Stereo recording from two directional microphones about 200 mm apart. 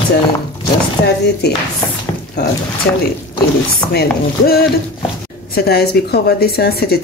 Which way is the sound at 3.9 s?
55° left (ahead or behind).